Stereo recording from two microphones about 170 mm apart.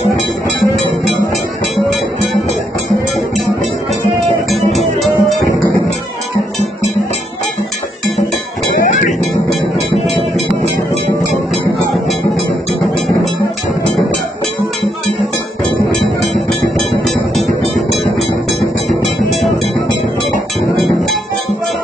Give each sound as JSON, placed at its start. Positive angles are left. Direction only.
{"t": 0.5, "sound": "music", "side_deg": 0}
{"t": 4.6, "sound": "music", "side_deg": -40}
{"t": 4.9, "sound": "music", "side_deg": 0}
{"t": 17.0, "sound": "music", "side_deg": 0}